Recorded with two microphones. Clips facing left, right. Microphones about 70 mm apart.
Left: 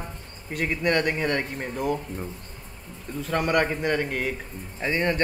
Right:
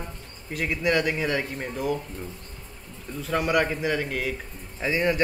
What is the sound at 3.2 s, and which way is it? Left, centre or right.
Speech, centre.